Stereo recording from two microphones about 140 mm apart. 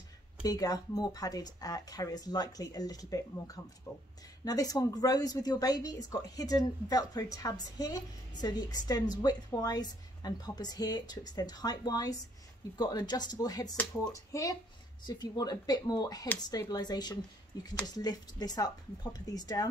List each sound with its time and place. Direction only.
0.4 s speech: 25° left (ahead or behind)